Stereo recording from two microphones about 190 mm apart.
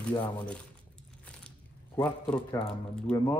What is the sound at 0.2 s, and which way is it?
Speech, 5° left (ahead or behind).